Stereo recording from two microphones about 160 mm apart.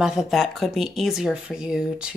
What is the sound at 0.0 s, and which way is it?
A man's voice, centre (ahead or behind).